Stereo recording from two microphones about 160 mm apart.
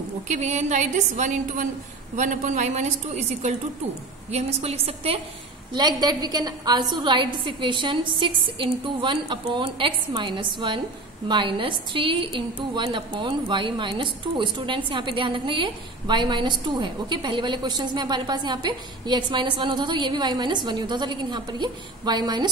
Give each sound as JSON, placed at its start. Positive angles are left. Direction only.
{"t": 0.3, "sound": "a woman's voice", "side_deg": -45}
{"t": 5.7, "sound": "a woman's voice", "side_deg": -25}